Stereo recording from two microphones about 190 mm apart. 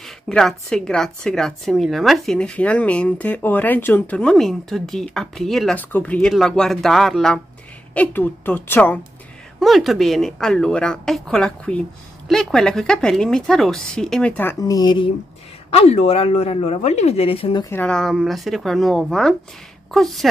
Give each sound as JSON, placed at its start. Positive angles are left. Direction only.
{"t": 0.3, "sound": "a woman's voice", "side_deg": 0}
{"t": 9.6, "sound": "speech", "side_deg": 0}
{"t": 15.7, "sound": "speech", "side_deg": 30}
{"t": 17.6, "sound": "speech", "side_deg": 10}